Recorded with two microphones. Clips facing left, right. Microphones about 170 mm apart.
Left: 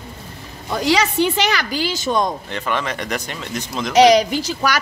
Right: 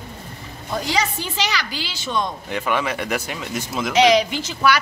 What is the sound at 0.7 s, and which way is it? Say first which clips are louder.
Speech: left 5 dB; 85° left.